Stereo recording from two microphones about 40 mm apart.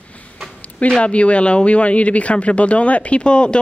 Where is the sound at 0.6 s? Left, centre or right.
Left.